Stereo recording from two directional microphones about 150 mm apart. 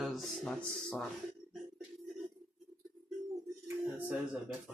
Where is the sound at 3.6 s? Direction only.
10° right (ahead or behind).